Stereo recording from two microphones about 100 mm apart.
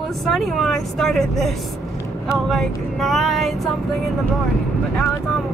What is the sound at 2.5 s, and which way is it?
Speech, centre (ahead or behind).